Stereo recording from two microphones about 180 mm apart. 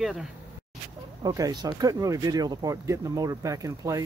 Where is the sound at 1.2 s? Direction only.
20° right (ahead or behind).